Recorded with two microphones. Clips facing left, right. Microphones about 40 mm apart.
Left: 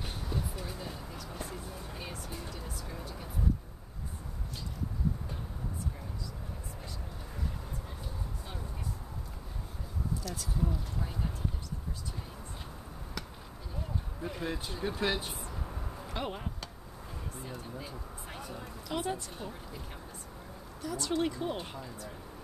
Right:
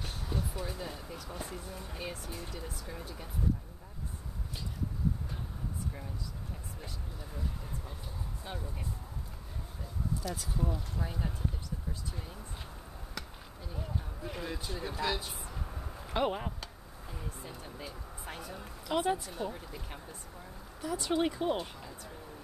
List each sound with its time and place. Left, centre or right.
0.0 s speech: centre
10.2 s speech: centre
14.4 s speech: centre
15.4 s a sound: centre
16.1 s speech: centre
17.4 s a sound: centre
18.9 s speech: centre
20.8 s speech: centre
21.7 s speech: centre